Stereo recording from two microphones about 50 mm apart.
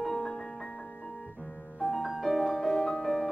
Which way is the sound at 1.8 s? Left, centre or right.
Centre.